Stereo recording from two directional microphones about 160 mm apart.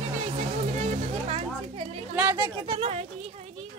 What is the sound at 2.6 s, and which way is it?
Speech, 35° right (ahead or behind).